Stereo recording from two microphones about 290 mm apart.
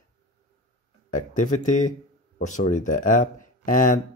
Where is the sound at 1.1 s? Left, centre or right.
Left.